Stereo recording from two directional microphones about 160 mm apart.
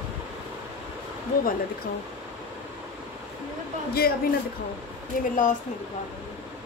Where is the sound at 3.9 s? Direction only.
75° left (ahead or behind).